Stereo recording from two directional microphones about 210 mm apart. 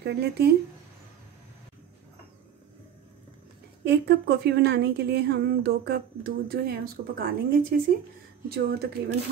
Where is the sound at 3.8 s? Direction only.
50° right (ahead or behind).